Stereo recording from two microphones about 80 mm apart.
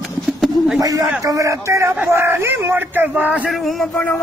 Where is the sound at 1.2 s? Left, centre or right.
Right; by 3.5 s centre.